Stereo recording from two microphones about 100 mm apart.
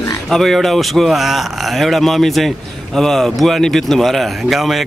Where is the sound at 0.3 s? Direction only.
5° left (ahead or behind).